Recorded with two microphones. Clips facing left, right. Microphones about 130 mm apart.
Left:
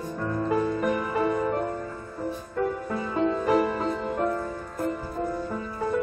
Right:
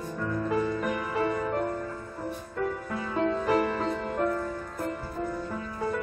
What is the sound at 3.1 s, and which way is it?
Music, 15° left (ahead or behind).